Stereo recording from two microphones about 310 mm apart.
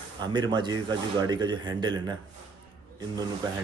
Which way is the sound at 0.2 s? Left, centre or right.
Centre.